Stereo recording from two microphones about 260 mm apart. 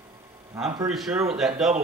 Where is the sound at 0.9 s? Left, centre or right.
Centre.